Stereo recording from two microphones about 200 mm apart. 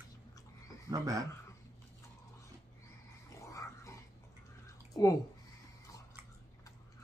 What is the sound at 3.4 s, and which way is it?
Dog, 15° left (ahead or behind).